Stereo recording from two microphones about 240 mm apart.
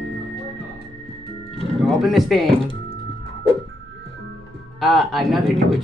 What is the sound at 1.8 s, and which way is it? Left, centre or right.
Speech, centre.